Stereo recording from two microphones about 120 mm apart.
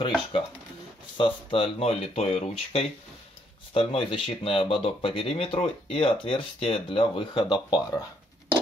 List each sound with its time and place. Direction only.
1.1 s speech: 45° left (ahead or behind)